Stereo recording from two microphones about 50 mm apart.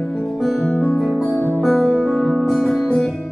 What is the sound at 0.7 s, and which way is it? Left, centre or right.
Guitar, left.